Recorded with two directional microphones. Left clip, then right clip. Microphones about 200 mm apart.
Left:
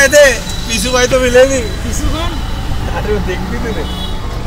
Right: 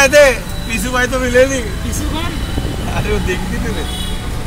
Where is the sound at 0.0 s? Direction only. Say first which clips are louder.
Left 2 dB; 20° right (ahead or behind).